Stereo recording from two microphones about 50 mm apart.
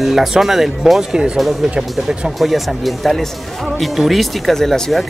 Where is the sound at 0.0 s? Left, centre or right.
Centre.